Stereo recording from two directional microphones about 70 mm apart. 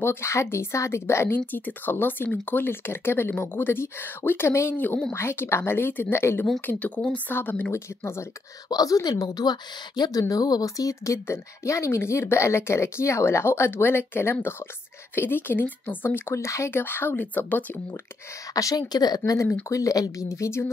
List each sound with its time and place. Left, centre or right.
0.0 s a woman's voice: left
1.3 s a woman's voice: left
4.7 s a woman's voice: left
7.7 s speech: left
8.6 s a woman's voice: left
10.3 s a woman's voice: left
16.3 s a woman's voice: left
18.5 s a woman's voice: left
19.7 s speech: left